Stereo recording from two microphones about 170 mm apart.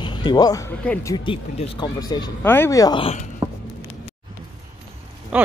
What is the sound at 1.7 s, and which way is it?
Speech, 25° left (ahead or behind).